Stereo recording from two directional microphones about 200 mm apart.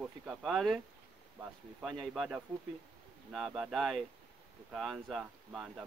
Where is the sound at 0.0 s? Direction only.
5° right (ahead or behind).